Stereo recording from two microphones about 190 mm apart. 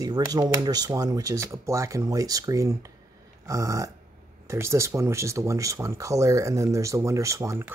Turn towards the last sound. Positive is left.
turn(degrees=-15)  # may be behind; listen again after turning